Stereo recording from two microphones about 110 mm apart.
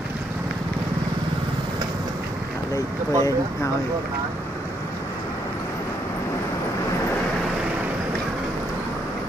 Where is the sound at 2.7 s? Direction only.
30° left (ahead or behind).